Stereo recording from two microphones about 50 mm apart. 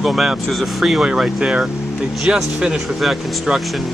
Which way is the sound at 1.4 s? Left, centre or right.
Right.